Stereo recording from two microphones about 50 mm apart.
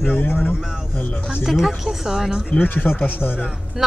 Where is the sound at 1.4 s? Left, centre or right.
Centre.